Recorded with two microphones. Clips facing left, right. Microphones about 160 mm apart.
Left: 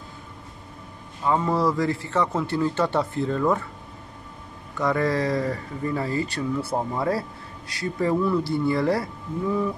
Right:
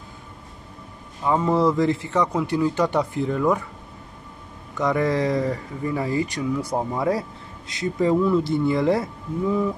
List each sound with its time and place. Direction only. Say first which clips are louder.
1.2 s a man's voice: right 2 dB; 15° right (ahead or behind)
4.7 s speech: right 2 dB; 20° right (ahead or behind)